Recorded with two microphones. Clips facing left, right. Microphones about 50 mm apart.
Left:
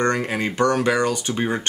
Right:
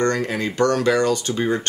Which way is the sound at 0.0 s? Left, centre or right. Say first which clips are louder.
Even; left.